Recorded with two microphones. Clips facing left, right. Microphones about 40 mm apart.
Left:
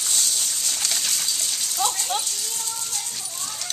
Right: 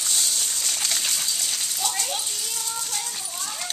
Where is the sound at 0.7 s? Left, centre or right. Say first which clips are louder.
Even; centre.